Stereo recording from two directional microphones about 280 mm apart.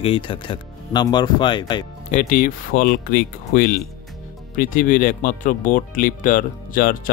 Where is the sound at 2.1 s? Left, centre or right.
Left.